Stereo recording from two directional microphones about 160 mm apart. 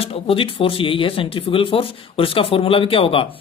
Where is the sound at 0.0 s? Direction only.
35° left (ahead or behind).